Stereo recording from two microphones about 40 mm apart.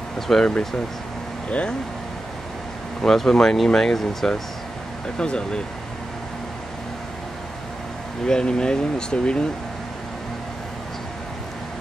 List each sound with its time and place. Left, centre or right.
0.3 s speech: centre
1.5 s speech: left
3.1 s speech: centre
5.0 s speech: centre
8.3 s speech: centre